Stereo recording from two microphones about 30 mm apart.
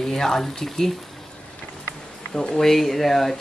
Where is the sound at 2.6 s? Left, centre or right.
Centre.